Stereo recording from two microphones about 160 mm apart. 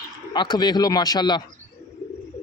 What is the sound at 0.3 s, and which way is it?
Speech, 25° left (ahead or behind).